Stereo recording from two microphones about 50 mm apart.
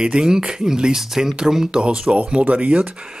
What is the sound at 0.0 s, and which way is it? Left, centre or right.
Speech, centre.